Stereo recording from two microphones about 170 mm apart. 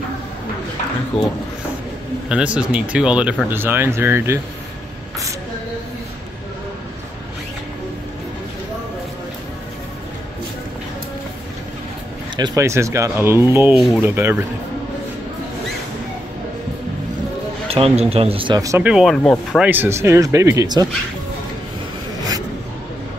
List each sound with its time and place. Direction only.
2.2 s speech: 5° right (ahead or behind)
12.4 s speech: 20° right (ahead or behind)
13.7 s speech: centre (ahead or behind)
14.0 s speech: 15° right (ahead or behind)
17.6 s speech: 35° right (ahead or behind)
18.6 s speech: 20° right (ahead or behind)
18.9 s speech: centre (ahead or behind)
19.6 s speech: 10° right (ahead or behind)